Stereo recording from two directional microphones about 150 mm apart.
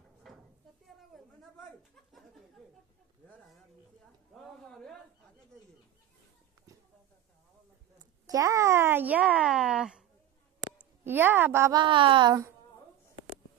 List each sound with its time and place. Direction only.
0.3 s cupboard open or close: centre (ahead or behind)
4.3 s a sound: 5° left (ahead or behind)
8.0 s speech: 25° right (ahead or behind); by 10.0 s 5° right (ahead or behind)
11.1 s a woman's voice: 15° right (ahead or behind)
11.7 s speech: 35° right (ahead or behind)